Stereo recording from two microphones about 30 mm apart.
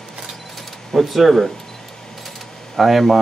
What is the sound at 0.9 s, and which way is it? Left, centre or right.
Speech, centre.